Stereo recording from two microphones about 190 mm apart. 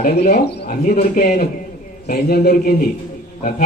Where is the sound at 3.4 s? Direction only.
45° left (ahead or behind).